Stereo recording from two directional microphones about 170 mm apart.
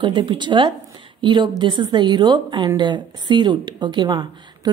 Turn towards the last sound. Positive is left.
turn(degrees=-25)  # may be behind; listen again after turning